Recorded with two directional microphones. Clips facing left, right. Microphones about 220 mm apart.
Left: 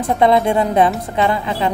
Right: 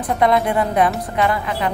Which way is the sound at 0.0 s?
25° left (ahead or behind).